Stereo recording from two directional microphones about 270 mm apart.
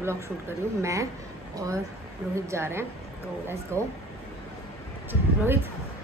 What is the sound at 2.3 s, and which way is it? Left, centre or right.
A woman's voice, centre.